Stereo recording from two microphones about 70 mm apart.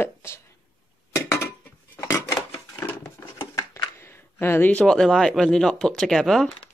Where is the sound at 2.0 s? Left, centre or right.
Left.